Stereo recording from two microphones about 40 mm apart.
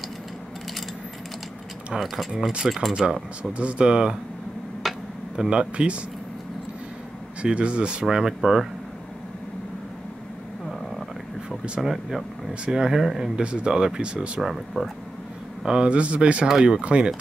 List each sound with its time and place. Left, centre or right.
1.9 s speech: centre
3.5 s speech: right
4.8 s tick-tock: centre
5.5 s speech: right
7.4 s speech: right; by 8.6 s centre
11.8 s speech: centre
13.4 s speech: right
14.4 s speech: centre
15.6 s speech: right